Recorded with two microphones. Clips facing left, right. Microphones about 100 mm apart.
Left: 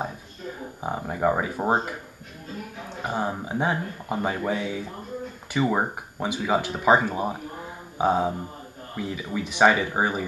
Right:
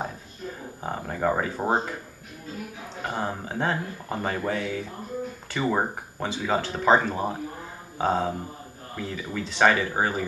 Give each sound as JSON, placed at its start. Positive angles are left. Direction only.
{"t": 0.8, "sound": "speech", "side_deg": 10}
{"t": 3.0, "sound": "speech", "side_deg": 10}